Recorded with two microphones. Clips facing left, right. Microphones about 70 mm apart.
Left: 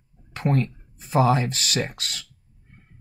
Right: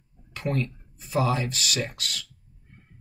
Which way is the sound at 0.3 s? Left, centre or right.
Left.